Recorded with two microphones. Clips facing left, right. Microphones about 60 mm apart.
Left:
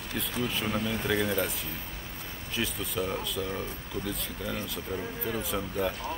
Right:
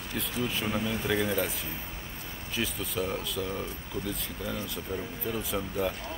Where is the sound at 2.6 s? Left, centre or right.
Centre.